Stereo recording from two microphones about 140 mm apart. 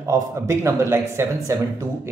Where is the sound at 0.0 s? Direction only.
20° right (ahead or behind).